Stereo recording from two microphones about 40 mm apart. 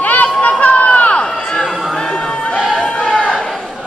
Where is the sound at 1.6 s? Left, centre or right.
Centre.